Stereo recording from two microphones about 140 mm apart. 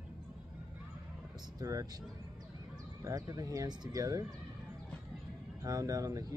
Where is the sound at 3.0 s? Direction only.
25° right (ahead or behind).